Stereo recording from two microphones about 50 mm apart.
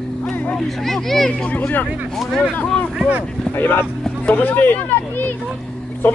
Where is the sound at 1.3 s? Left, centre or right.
Left.